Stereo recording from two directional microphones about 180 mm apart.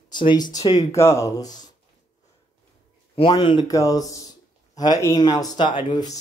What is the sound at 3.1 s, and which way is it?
Speech, 30° left (ahead or behind).